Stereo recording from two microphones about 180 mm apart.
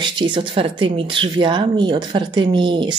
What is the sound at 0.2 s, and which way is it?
Speech, 25° right (ahead or behind).